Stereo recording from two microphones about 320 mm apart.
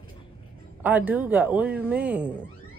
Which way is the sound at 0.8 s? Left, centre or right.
Centre.